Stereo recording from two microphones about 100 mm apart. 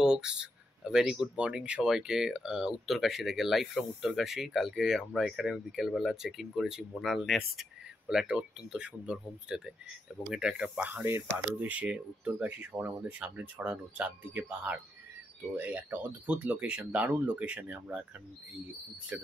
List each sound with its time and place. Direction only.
0.0 s speech: 5° right (ahead or behind)
19.1 s speech: 20° right (ahead or behind)